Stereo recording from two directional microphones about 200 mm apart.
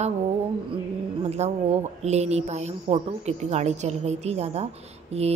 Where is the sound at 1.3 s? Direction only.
35° right (ahead or behind).